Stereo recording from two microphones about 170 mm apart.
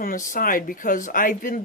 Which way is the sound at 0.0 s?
55° left (ahead or behind).